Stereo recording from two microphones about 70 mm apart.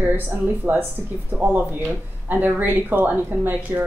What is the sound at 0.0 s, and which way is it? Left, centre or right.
A woman's voice, right.